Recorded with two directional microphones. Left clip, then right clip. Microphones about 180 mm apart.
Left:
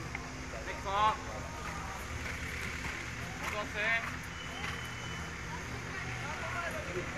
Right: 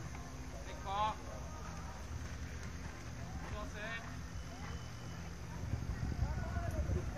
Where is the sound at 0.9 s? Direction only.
55° right (ahead or behind).